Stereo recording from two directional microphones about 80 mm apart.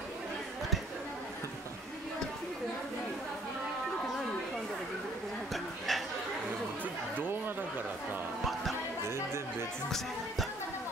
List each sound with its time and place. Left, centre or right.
5.5 s a sound: centre
7.2 s chatter: right
9.0 s chatter: right
9.8 s music: centre